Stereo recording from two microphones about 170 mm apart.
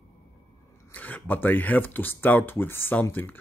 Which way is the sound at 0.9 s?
10° left (ahead or behind).